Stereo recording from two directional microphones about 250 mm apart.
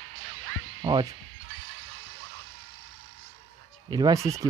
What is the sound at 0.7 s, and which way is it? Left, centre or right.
Music, centre.